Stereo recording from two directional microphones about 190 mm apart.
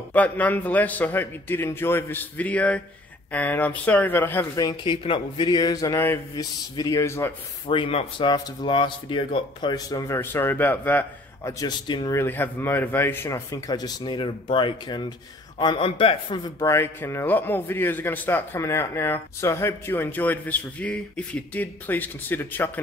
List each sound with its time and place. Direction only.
0.1 s a man's voice: 10° left (ahead or behind)
7.7 s speech: 25° left (ahead or behind); by 11.5 s 10° left (ahead or behind)
11.6 s a man's voice: 20° left (ahead or behind)